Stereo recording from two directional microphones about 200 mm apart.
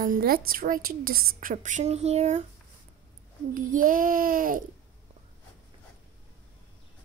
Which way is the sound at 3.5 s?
40° right (ahead or behind).